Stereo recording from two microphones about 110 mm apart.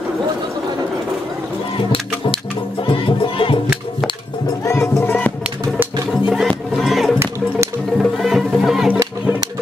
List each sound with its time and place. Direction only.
2.9 s music: 55° left (ahead or behind)
5.0 s music: 20° left (ahead or behind)
6.2 s music: centre (ahead or behind)